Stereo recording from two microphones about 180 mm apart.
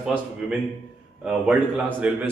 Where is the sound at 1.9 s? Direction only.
10° right (ahead or behind).